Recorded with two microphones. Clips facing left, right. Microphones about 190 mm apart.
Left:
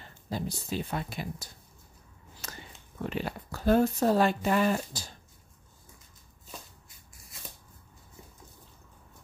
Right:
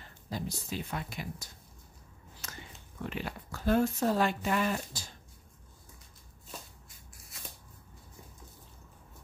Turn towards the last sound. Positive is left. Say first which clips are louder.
# even
turn(degrees=0)  # may be behind; listen again after turning